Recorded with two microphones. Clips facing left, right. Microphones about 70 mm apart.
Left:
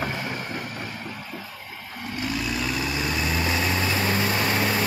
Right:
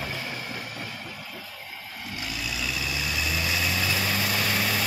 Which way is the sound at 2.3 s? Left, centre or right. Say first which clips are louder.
Left 5 dB; left.